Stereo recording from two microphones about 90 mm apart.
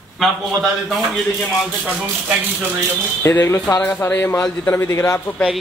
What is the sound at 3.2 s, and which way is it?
Speech, 30° left (ahead or behind).